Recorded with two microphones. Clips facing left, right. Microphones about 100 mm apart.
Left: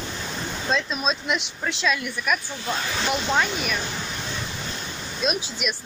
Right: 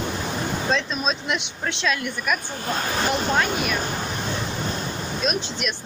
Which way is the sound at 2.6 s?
45° right (ahead or behind).